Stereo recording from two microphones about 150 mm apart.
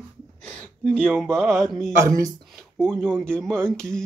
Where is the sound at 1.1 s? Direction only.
Centre (ahead or behind).